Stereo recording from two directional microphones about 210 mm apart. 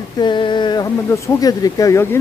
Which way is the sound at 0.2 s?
20° left (ahead or behind).